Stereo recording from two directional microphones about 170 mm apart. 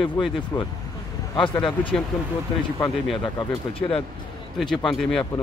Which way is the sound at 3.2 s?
30° left (ahead or behind).